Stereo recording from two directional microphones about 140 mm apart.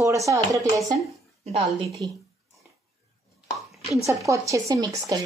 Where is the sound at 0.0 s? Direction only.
20° right (ahead or behind).